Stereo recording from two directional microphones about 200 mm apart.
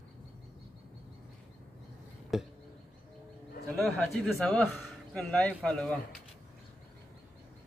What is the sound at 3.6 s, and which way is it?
A man's voice, 5° left (ahead or behind).